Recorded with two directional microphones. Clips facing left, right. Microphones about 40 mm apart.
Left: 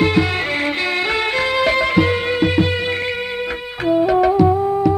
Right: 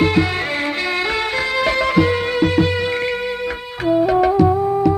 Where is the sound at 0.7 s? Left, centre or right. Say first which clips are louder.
Left 1 dB; left.